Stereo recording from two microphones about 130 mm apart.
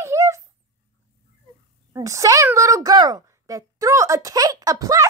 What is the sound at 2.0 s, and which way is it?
A woman's voice, 25° right (ahead or behind).